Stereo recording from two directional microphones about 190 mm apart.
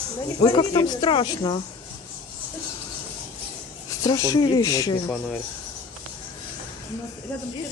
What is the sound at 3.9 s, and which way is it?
Speech, 20° left (ahead or behind).